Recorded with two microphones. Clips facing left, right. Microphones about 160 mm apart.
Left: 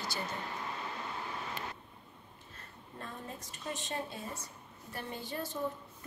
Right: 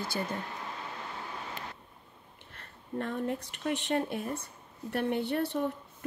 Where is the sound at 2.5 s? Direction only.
70° right (ahead or behind).